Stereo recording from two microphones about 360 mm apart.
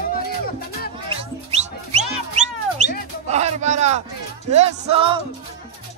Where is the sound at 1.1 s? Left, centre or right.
Centre.